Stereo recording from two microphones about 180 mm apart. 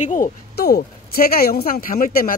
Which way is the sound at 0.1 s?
55° left (ahead or behind).